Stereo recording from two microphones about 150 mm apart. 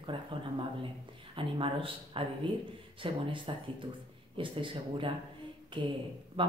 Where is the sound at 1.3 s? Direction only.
35° right (ahead or behind).